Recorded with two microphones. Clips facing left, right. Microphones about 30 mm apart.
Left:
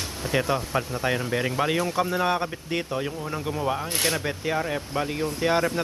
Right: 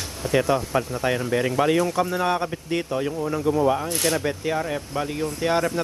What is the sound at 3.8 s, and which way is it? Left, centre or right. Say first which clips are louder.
Speech: right 2 dB; left.